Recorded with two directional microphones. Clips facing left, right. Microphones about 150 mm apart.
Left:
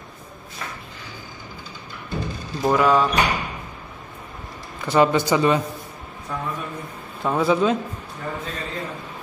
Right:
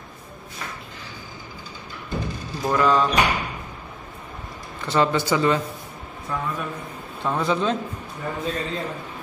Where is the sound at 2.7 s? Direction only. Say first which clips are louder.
Left 1 dB; 10° left (ahead or behind).